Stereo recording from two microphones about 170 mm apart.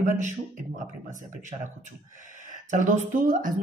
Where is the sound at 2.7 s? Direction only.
50° right (ahead or behind).